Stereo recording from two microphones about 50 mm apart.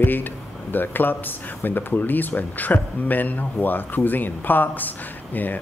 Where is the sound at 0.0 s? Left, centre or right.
Left.